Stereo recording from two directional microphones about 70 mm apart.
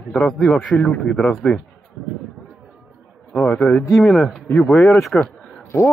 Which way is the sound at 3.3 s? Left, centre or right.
Centre.